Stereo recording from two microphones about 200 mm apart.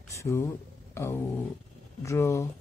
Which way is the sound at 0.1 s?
15° left (ahead or behind).